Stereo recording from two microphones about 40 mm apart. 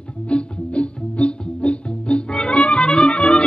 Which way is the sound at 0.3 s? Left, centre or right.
Left.